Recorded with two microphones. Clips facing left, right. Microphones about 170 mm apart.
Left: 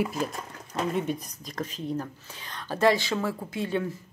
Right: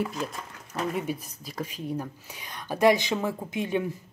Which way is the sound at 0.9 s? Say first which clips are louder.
Left 2 dB; 5° right (ahead or behind).